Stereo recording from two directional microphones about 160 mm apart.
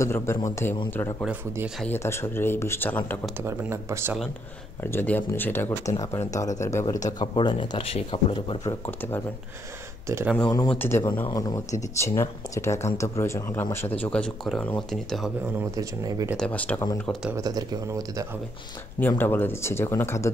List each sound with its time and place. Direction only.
0.0 s speech: 15° left (ahead or behind)
1.2 s speech: 10° right (ahead or behind)
1.8 s speech: 15° left (ahead or behind)
3.4 s speech: 15° right (ahead or behind)
4.9 s speech: 10° left (ahead or behind); by 8.7 s 35° left (ahead or behind)
8.8 s speech: 15° left (ahead or behind)
10.0 s speech: 15° right (ahead or behind)
10.7 s speech: 15° left (ahead or behind)
15.7 s speech: 20° right (ahead or behind)
16.3 s speech: 10° left (ahead or behind)
17.4 s speech: 25° right (ahead or behind)
18.9 s speech: 10° left (ahead or behind)